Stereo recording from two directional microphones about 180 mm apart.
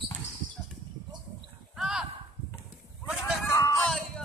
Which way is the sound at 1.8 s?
5° right (ahead or behind).